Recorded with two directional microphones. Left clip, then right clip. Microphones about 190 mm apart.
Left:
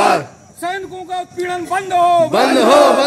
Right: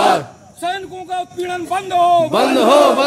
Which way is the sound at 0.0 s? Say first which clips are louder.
Even; centre (ahead or behind).